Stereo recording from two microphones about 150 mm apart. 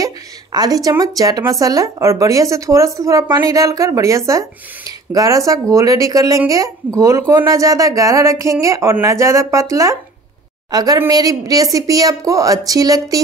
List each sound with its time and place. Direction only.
0.0 s a woman's voice: 25° right (ahead or behind)